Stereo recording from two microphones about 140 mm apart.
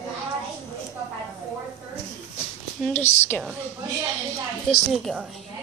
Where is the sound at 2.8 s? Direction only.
15° left (ahead or behind).